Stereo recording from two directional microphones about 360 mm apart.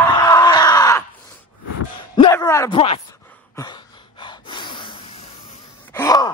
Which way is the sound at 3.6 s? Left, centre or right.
Centre.